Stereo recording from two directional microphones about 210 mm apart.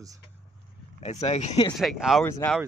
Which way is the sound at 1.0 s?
30° left (ahead or behind).